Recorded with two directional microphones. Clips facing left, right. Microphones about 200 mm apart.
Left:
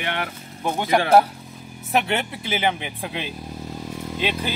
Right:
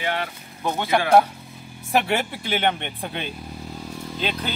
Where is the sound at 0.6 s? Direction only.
15° left (ahead or behind).